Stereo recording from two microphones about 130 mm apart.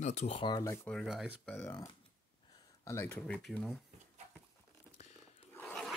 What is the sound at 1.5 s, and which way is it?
Speech, 20° left (ahead or behind).